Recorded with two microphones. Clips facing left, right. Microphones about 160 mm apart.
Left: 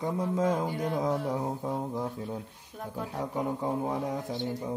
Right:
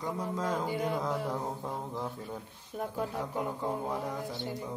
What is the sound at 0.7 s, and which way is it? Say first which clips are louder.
Speech: even; 5° right (ahead or behind).